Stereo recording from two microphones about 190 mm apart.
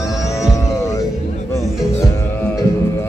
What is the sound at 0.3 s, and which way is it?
Music, 15° left (ahead or behind).